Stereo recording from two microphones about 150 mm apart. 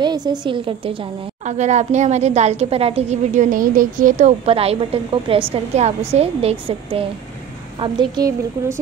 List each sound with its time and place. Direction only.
0.0 s a woman's voice: 30° right (ahead or behind)
1.4 s a woman's voice: 50° right (ahead or behind)
3.5 s speech: 65° right (ahead or behind)
4.5 s a woman's voice: 40° right (ahead or behind)
7.8 s a woman's voice: 25° right (ahead or behind)